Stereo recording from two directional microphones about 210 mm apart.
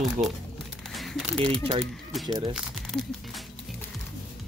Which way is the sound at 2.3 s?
25° right (ahead or behind).